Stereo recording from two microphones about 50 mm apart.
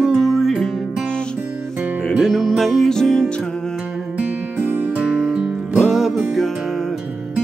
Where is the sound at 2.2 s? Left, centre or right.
Centre.